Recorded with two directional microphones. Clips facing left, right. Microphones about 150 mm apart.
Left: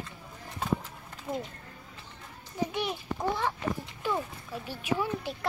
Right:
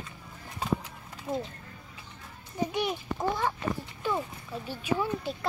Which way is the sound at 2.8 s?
5° right (ahead or behind).